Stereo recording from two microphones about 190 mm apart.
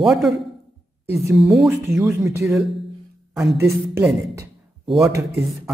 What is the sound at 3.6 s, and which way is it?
Speech, 15° right (ahead or behind).